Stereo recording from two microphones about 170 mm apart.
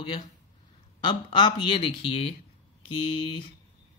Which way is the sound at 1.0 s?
25° left (ahead or behind).